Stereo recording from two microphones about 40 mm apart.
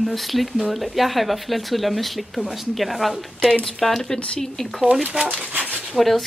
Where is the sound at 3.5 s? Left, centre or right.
Centre.